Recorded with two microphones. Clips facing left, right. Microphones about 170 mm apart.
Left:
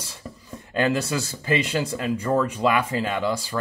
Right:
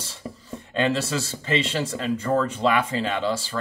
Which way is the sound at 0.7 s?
25° right (ahead or behind).